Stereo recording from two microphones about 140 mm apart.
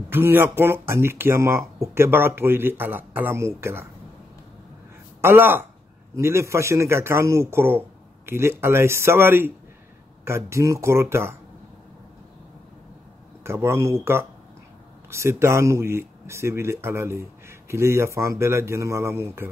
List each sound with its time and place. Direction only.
0.1 s speech: 15° right (ahead or behind)
5.2 s speech: 15° right (ahead or behind)
13.4 s speech: 20° right (ahead or behind)